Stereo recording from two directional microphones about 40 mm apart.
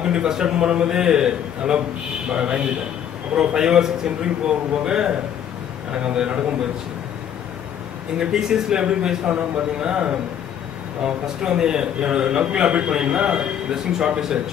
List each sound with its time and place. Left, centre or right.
0.0 s a man's voice: right
8.2 s a man's voice: centre